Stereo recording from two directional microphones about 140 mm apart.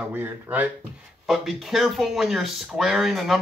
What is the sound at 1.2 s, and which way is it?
Speech, centre (ahead or behind).